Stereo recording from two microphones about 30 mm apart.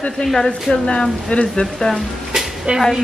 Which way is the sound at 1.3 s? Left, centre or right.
Left.